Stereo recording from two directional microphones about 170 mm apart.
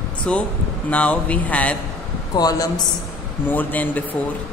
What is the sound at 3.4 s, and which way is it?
Speech, 10° left (ahead or behind).